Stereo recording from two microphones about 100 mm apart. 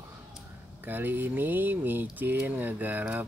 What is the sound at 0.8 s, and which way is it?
Speech, 20° right (ahead or behind).